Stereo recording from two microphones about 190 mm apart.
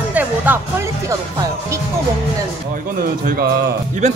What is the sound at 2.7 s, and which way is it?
Speech, 50° right (ahead or behind).